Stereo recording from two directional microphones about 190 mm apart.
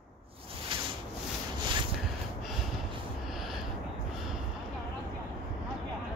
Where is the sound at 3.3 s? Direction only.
Centre (ahead or behind).